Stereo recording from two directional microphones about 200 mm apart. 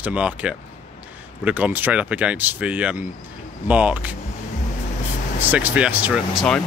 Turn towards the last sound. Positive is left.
turn(degrees=0)  # may be behind; listen again after turning